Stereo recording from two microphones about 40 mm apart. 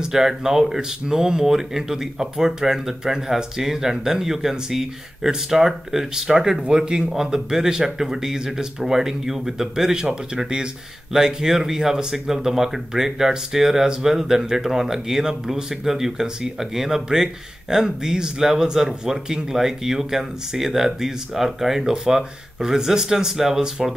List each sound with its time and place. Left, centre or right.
0.0 s speech: centre